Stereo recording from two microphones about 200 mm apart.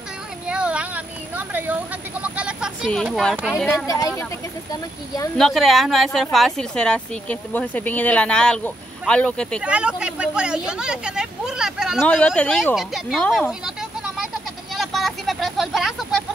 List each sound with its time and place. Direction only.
0.5 s a sound: 5° right (ahead or behind)
2.2 s speech: 5° right (ahead or behind)
3.6 s speech: 15° left (ahead or behind)
5.4 s speech: centre (ahead or behind)
9.6 s speech: 5° right (ahead or behind)
12.0 s a sound: 5° left (ahead or behind)